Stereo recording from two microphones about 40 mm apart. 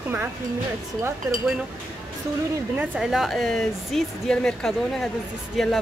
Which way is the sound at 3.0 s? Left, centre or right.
Centre.